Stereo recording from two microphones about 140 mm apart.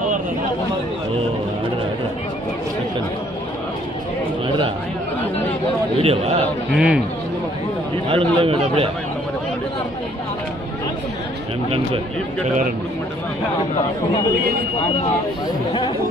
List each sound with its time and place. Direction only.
5.9 s a man's voice: 45° right (ahead or behind)
6.7 s a man's voice: 5° right (ahead or behind)
8.1 s a man's voice: 40° right (ahead or behind)